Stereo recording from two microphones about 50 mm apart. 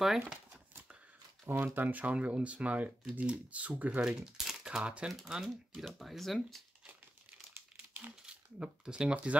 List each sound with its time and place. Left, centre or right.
0.0 s speech: centre
1.4 s speech: right
4.0 s speech: centre
4.6 s speech: right
5.0 s speech: centre
8.0 s speech: right
8.5 s speech: centre